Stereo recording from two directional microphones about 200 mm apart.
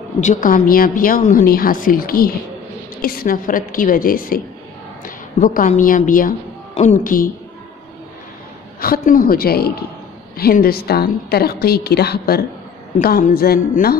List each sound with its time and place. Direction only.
0.2 s a woman's voice: 40° left (ahead or behind)
8.8 s a woman's voice: 45° left (ahead or behind)